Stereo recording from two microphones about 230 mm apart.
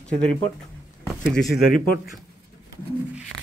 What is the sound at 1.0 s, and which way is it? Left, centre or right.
Speech, centre.